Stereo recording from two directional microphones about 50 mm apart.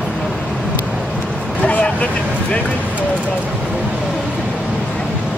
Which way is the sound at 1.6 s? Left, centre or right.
Left.